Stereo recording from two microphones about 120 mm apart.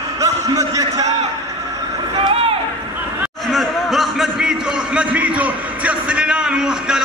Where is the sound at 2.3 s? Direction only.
50° right (ahead or behind).